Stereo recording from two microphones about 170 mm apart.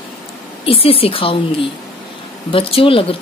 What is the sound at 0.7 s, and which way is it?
Speech, 35° left (ahead or behind).